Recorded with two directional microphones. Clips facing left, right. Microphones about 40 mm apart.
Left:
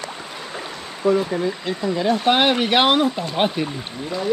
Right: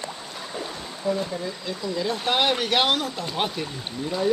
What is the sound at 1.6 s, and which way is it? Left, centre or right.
Speech, left.